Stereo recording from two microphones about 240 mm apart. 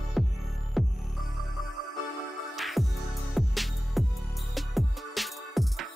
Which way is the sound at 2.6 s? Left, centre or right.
Centre.